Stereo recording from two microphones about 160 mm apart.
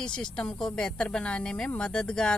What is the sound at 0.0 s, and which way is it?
Speech, 5° left (ahead or behind).